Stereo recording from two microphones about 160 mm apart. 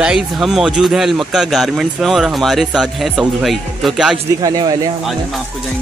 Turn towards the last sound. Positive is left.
turn(degrees=-25)  # may be behind; listen again after turning